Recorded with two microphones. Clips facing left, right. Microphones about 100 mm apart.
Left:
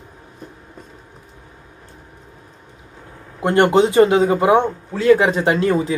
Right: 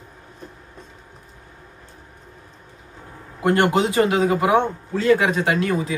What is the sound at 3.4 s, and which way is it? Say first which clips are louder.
A man's voice: left 4 dB; 25° left (ahead or behind).